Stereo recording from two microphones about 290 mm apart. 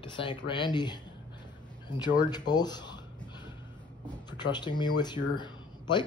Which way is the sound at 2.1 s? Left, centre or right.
Centre.